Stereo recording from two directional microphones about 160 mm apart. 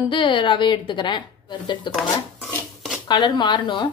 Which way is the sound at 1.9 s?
Centre (ahead or behind).